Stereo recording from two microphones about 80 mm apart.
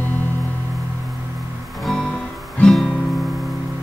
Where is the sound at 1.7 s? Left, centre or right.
Centre.